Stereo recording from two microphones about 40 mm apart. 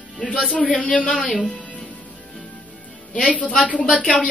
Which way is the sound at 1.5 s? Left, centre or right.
Left.